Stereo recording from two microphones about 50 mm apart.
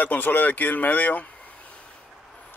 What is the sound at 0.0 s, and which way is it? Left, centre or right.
Speech, left.